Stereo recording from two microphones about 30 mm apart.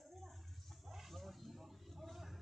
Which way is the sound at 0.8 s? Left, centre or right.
Centre.